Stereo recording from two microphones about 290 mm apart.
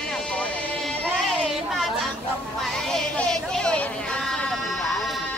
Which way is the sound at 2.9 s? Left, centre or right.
Centre.